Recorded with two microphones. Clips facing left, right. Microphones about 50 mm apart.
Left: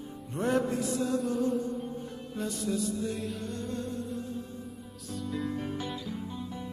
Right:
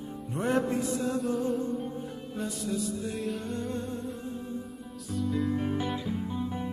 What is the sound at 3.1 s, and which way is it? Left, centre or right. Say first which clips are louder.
Music: right 3 dB; centre.